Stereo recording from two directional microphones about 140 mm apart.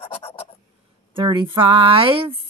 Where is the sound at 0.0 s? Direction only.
45° left (ahead or behind).